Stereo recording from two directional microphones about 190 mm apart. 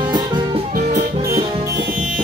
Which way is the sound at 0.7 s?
45° right (ahead or behind).